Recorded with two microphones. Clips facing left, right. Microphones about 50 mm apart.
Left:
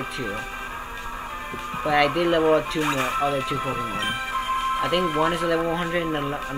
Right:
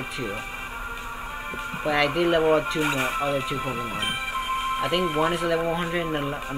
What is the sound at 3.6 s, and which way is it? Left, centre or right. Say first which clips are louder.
Speech: left 2 dB; left.